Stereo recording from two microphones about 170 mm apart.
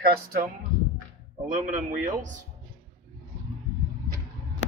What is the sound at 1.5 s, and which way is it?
Speech, 50° right (ahead or behind).